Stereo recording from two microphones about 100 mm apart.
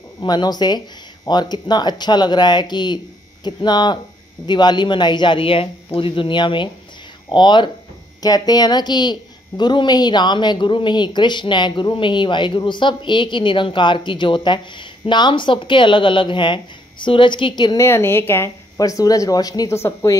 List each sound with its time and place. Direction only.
0.2 s speech: 45° left (ahead or behind)
17.7 s a woman's voice: 25° left (ahead or behind)
18.8 s speech: 40° left (ahead or behind)
19.8 s a woman's voice: 25° left (ahead or behind)